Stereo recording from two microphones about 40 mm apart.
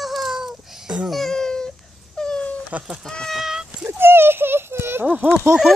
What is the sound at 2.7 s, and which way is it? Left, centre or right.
Speech, right.